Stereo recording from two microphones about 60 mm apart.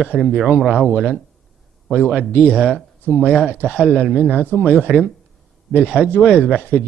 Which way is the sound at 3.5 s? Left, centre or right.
Left.